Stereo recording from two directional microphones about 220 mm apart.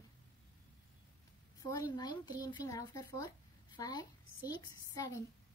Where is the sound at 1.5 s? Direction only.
15° left (ahead or behind).